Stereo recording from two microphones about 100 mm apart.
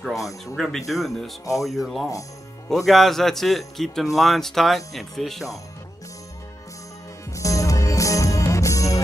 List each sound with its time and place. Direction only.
0.1 s speech: 35° left (ahead or behind)
0.6 s a man's voice: centre (ahead or behind)
7.3 s music: 35° left (ahead or behind)